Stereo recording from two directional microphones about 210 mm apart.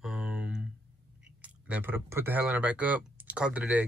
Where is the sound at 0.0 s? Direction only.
5° right (ahead or behind).